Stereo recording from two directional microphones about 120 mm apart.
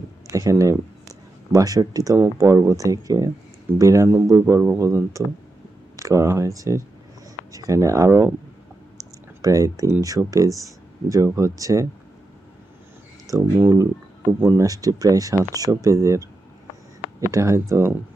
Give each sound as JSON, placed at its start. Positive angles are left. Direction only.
{"t": 0.3, "sound": "speech", "side_deg": -30}
{"t": 9.4, "sound": "speech", "side_deg": -30}
{"t": 13.3, "sound": "speech", "side_deg": -25}
{"t": 14.7, "sound": "speech", "side_deg": -30}